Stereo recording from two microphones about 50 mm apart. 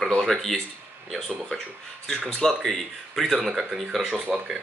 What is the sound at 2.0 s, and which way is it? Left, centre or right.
Speech, centre.